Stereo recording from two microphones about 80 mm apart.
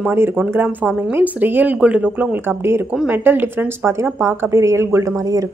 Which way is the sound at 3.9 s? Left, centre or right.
Right.